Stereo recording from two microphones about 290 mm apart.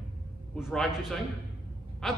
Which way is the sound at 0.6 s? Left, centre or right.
Centre.